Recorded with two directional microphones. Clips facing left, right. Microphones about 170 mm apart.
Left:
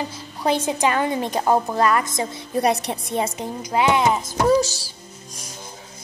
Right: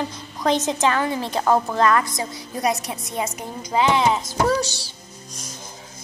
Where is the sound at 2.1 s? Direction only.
25° left (ahead or behind).